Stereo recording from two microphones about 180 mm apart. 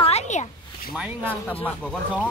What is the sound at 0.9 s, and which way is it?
Speech, 10° right (ahead or behind).